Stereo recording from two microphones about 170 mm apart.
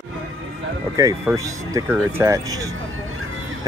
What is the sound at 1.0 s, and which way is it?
Speech, 15° right (ahead or behind).